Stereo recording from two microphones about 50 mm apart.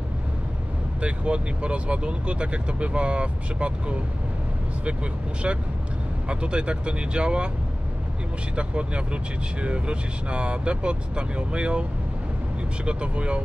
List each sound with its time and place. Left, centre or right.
1.0 s speech: right
6.2 s speech: right
8.5 s speech: right
12.8 s speech: right